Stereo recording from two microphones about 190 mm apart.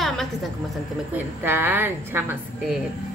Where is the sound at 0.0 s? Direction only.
Centre (ahead or behind).